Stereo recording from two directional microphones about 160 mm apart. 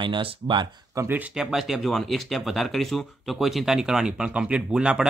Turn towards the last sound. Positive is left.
turn(degrees=-5)  # may be behind; listen again after turning